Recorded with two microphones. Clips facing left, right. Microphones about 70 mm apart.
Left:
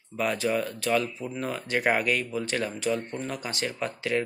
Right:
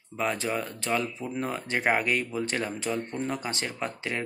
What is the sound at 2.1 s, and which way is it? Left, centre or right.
Speech, right.